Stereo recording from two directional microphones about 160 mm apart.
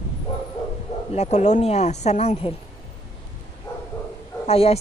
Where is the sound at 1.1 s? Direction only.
45° left (ahead or behind).